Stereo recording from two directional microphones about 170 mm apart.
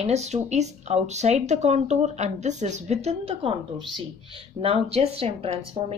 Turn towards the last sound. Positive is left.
turn(degrees=-35)  # may be behind; listen again after turning